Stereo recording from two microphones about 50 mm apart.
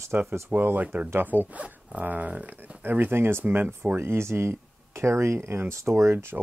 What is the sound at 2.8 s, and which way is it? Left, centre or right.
Speech, right.